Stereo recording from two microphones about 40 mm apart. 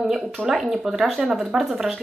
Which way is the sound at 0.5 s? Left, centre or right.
Centre.